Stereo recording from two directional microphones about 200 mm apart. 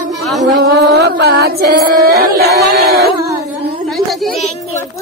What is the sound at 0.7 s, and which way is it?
Music, 55° right (ahead or behind).